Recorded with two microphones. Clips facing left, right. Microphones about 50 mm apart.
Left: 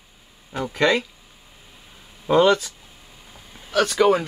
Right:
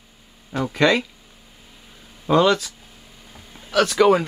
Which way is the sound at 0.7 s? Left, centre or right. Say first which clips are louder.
Right 1 dB; centre.